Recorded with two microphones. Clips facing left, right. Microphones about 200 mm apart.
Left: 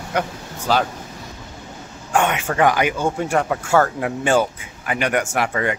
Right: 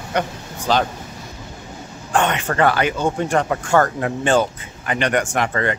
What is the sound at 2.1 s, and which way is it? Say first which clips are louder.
Speech: even; 10° left (ahead or behind).